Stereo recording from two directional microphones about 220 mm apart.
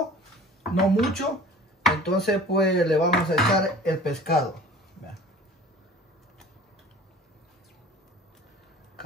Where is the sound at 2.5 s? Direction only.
50° left (ahead or behind).